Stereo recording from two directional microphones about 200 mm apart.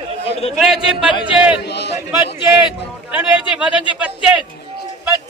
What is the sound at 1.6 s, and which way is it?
Speech, 55° left (ahead or behind).